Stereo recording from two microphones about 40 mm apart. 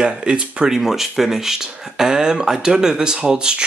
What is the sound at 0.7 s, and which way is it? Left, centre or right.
Speech, centre.